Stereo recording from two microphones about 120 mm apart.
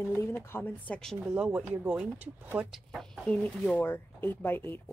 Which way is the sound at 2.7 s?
Centre (ahead or behind).